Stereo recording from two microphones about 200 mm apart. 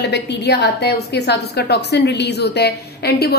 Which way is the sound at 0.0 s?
60° left (ahead or behind).